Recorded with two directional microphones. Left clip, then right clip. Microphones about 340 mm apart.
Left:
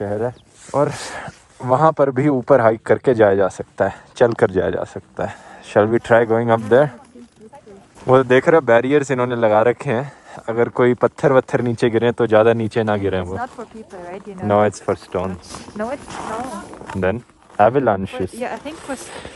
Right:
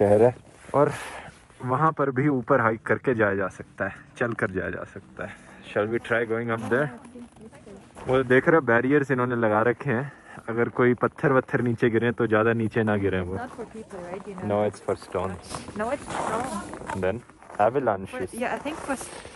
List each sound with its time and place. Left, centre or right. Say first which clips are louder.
0.0 s speech: right 4 dB; centre
0.7 s speech: left 3 dB; left
1.6 s a man's voice: left 9 dB; centre
8.1 s a man's voice: left 7 dB; centre
14.5 s speech: left 9 dB; left
17.0 s speech: left 9 dB; left
18.4 s a man's voice: left 2 dB; centre
19.0 s speech: left 7 dB; left